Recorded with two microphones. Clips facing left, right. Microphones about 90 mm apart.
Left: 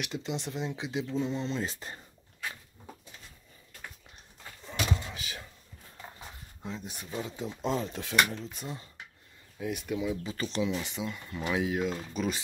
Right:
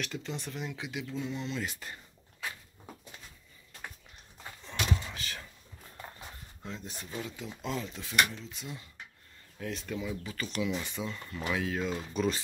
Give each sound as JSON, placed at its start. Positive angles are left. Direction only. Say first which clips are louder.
{"t": 0.0, "sound": "speech", "louder": "left 3 dB", "side_deg": 20}
{"t": 4.6, "sound": "a sound", "louder": "left 1 dB", "side_deg": 10}
{"t": 6.6, "sound": "speech", "louder": "left 2 dB", "side_deg": 15}
{"t": 7.2, "sound": "speech", "louder": "left 5 dB", "side_deg": 25}
{"t": 7.9, "sound": "speech", "louder": "left 2 dB", "side_deg": 65}
{"t": 9.6, "sound": "speech", "louder": "left 4 dB", "side_deg": 10}
{"t": 10.3, "sound": "speech", "louder": "left 3 dB", "side_deg": 30}
{"t": 10.8, "sound": "speech", "louder": "left 1 dB", "side_deg": 15}
{"t": 11.8, "sound": "speech", "louder": "even", "side_deg": 0}